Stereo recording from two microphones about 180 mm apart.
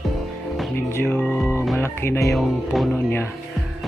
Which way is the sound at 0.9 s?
10° left (ahead or behind).